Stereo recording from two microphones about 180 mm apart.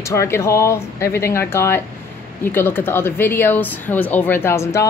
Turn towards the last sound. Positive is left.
turn(degrees=15)  # may be behind; listen again after turning